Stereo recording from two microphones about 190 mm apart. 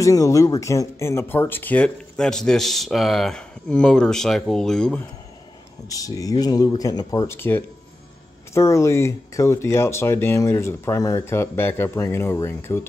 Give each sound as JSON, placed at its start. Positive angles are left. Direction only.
{"t": 0.0, "sound": "speech", "side_deg": 15}
{"t": 5.9, "sound": "speech", "side_deg": 20}